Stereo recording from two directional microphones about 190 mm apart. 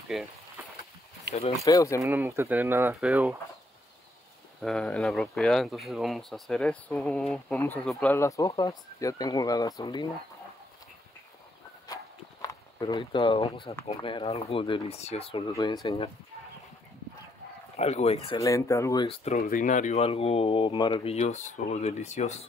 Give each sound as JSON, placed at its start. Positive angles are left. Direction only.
{"t": 0.1, "sound": "speech", "side_deg": 0}
{"t": 1.6, "sound": "speech", "side_deg": 15}
{"t": 2.0, "sound": "speech", "side_deg": -15}
{"t": 4.6, "sound": "speech", "side_deg": 5}
{"t": 11.9, "sound": "walk", "side_deg": 20}
{"t": 13.8, "sound": "speech", "side_deg": 30}
{"t": 15.5, "sound": "speech", "side_deg": 20}
{"t": 17.7, "sound": "speech", "side_deg": 35}
{"t": 18.4, "sound": "speech", "side_deg": 15}
{"t": 19.0, "sound": "speech", "side_deg": 30}